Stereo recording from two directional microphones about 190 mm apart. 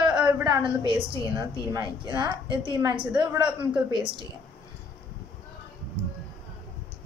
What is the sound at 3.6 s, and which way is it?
Speech, 5° right (ahead or behind).